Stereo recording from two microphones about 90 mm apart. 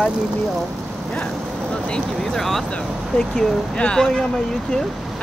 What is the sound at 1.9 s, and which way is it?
Speech, 5° left (ahead or behind).